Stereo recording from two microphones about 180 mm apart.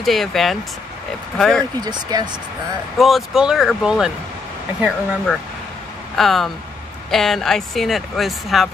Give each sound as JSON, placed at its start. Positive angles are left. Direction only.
{"t": 0.0, "sound": "speech", "side_deg": 0}
{"t": 1.8, "sound": "speech", "side_deg": -20}
{"t": 3.0, "sound": "speech", "side_deg": 0}